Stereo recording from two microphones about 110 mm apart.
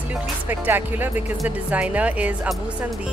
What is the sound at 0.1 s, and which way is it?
Speech, 20° right (ahead or behind).